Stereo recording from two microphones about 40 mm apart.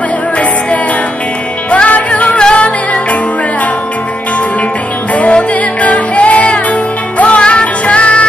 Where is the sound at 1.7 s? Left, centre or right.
Left.